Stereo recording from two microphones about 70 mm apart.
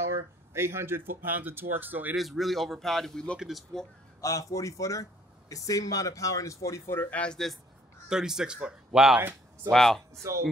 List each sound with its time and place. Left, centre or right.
0.1 s speech: right
2.1 s a man's voice: centre
4.2 s speech: left
7.0 s speech: left
7.2 s a man's voice: centre
8.1 s speech: centre
9.7 s a man's voice: centre